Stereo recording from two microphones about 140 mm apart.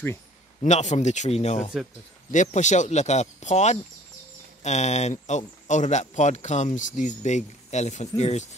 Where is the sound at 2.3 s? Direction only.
60° left (ahead or behind).